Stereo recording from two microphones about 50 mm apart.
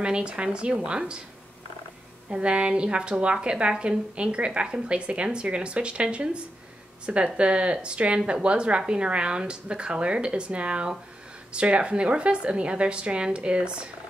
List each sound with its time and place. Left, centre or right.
0.0 s a woman's voice: centre
2.3 s a woman's voice: right